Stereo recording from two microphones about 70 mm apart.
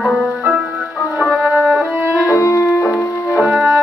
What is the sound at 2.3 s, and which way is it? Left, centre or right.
Music, left.